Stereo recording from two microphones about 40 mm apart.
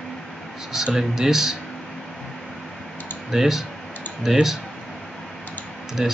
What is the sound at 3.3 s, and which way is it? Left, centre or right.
Speech, centre.